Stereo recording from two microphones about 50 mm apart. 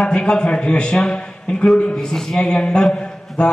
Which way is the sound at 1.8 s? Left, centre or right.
Left.